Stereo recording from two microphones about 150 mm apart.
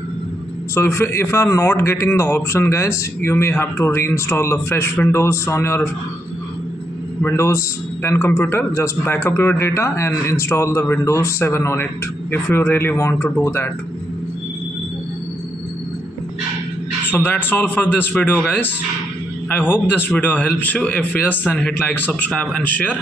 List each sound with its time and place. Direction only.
0.7 s a man's voice: 15° left (ahead or behind)
7.2 s a man's voice: 15° left (ahead or behind)
17.1 s a man's voice: 10° left (ahead or behind)
19.5 s a man's voice: 10° left (ahead or behind)